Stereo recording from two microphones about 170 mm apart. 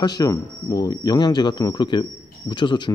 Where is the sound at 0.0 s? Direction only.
20° left (ahead or behind).